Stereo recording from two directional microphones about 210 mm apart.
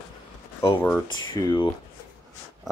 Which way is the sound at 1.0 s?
20° left (ahead or behind).